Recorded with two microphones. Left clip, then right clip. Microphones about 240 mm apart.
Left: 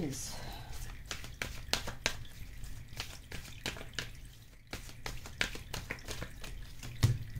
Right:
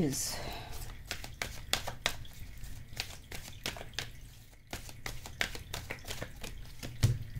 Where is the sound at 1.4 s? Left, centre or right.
Centre.